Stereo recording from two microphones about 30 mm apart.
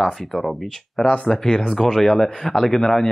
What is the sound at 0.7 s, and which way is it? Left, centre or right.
Speech, left.